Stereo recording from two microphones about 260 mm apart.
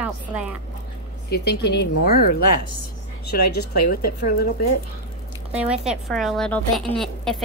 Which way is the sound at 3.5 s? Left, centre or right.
Left.